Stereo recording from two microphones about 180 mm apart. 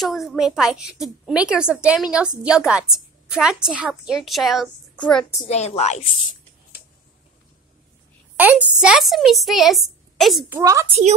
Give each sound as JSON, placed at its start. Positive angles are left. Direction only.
{"t": 0.0, "sound": "a woman's voice", "side_deg": 0}
{"t": 5.4, "sound": "a woman's voice", "side_deg": 40}
{"t": 8.4, "sound": "a woman's voice", "side_deg": -10}
{"t": 10.5, "sound": "a woman's voice", "side_deg": -15}